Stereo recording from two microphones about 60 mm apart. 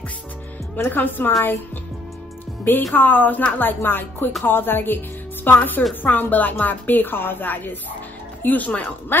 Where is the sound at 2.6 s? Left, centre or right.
Left.